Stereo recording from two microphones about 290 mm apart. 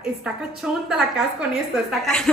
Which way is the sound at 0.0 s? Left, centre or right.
Centre.